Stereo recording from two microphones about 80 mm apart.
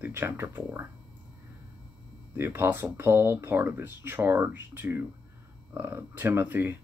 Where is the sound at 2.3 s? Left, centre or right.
Right.